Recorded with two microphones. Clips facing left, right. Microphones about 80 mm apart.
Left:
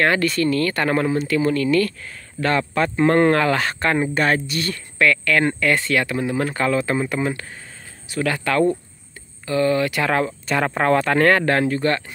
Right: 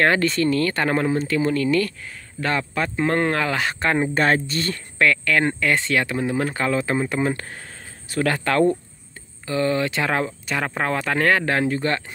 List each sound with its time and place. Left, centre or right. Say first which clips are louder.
0.0 s speech: even; right
2.4 s speech: left 4 dB; centre
4.1 s speech: even; right
9.5 s speech: left 3 dB; right
10.5 s speech: left 6 dB; centre
11.6 s speech: left 2 dB; right